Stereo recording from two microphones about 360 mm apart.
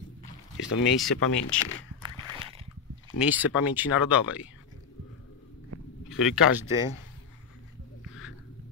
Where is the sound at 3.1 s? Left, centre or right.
Centre.